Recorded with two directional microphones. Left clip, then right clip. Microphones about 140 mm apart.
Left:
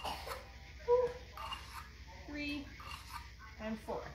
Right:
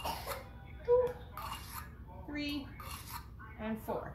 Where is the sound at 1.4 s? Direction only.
5° right (ahead or behind).